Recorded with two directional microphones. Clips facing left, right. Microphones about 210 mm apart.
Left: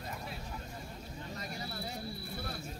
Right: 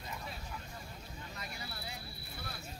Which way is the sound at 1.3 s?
40° left (ahead or behind).